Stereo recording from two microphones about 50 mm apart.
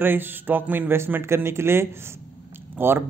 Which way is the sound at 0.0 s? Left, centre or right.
Right.